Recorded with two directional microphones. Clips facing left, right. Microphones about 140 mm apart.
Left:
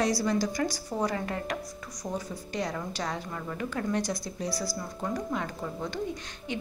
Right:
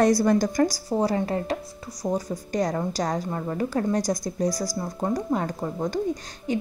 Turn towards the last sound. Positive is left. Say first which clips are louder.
# right 8 dB
turn(degrees=-40)  # may be behind; listen again after turning